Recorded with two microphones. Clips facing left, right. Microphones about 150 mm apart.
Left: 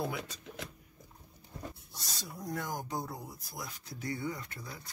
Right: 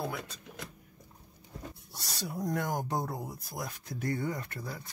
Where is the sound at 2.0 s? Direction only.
65° right (ahead or behind).